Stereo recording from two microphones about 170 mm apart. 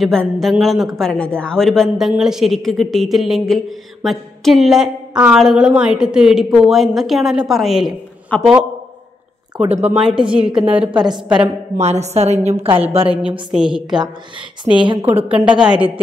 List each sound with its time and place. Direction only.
0.0 s a woman's voice: centre (ahead or behind)
9.6 s a woman's voice: 35° right (ahead or behind)
9.8 s a woman's voice: 5° right (ahead or behind)
10.9 s a woman's voice: 25° right (ahead or behind)
11.2 s a woman's voice: 5° right (ahead or behind)
11.8 s a woman's voice: 40° right (ahead or behind)
13.5 s a woman's voice: 5° right (ahead or behind)
14.6 s a woman's voice: 30° right (ahead or behind)
15.4 s a woman's voice: 5° right (ahead or behind)